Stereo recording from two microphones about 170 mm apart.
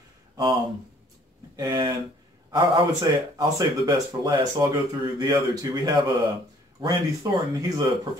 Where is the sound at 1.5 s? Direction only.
25° right (ahead or behind).